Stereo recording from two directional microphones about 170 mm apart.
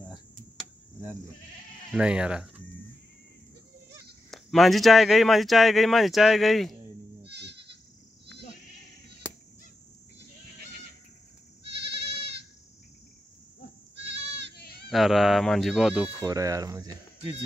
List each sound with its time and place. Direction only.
1.9 s speech: 5° right (ahead or behind)
4.3 s speech: centre (ahead or behind)
7.2 s goat: 80° right
13.9 s goat: 90° right
14.5 s baby cry: 70° left (ahead or behind)
14.9 s speech: centre (ahead or behind)
16.3 s speech: 20° right (ahead or behind)